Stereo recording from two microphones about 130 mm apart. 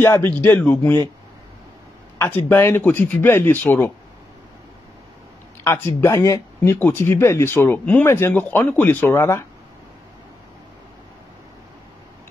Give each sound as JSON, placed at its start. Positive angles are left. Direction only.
{"t": 0.0, "sound": "speech", "side_deg": 15}
{"t": 2.1, "sound": "speech", "side_deg": 15}
{"t": 5.6, "sound": "speech", "side_deg": 20}